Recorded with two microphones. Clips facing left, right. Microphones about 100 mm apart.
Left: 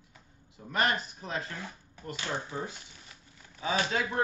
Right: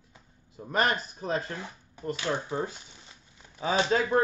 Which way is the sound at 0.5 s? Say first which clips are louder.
Right 2 dB; 40° right (ahead or behind).